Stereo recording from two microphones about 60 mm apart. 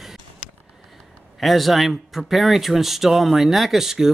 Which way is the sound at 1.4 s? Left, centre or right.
Centre.